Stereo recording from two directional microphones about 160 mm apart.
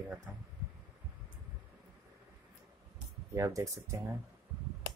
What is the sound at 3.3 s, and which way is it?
Speech, 20° right (ahead or behind).